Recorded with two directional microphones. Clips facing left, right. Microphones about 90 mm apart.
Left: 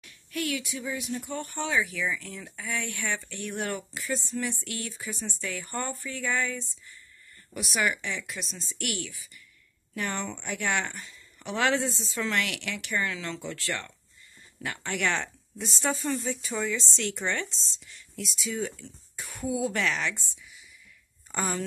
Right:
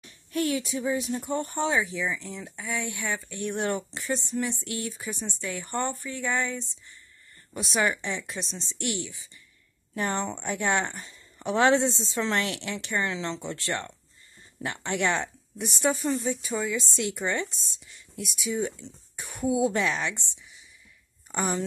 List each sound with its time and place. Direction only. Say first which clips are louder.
0.0 s speech: right 5 dB; 30° right (ahead or behind); by 21.4 s 10° right (ahead or behind)